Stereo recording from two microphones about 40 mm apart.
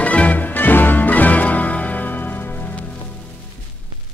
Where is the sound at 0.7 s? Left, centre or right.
Left.